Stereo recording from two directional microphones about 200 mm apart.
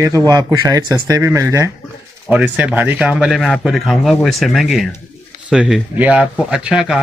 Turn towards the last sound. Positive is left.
turn(degrees=-5)  # may be behind; listen again after turning